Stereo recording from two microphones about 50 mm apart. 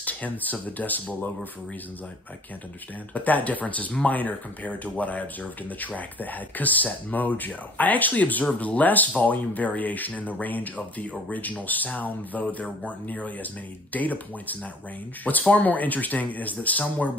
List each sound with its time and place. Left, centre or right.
0.0 s speech: left
3.2 s speech: left